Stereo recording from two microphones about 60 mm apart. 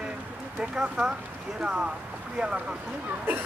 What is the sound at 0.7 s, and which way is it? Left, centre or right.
Speech, centre.